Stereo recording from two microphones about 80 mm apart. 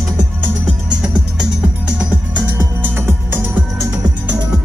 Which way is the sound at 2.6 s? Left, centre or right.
Right.